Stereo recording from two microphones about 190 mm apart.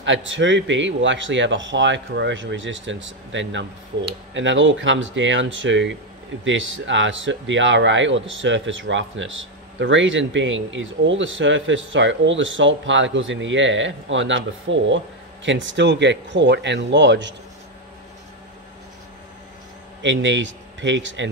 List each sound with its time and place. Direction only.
0.0 s a man's voice: 80° right
20.0 s a man's voice: 70° right (ahead or behind)